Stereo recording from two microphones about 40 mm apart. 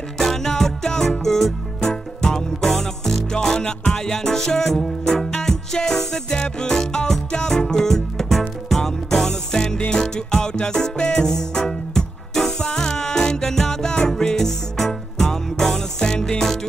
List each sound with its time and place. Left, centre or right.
0.2 s music: centre
3.6 s music: left
4.0 s music: centre